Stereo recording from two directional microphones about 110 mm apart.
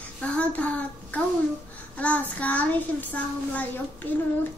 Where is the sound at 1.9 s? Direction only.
15° left (ahead or behind).